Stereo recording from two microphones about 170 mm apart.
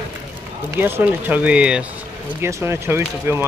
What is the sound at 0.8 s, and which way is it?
Speech, 10° right (ahead or behind).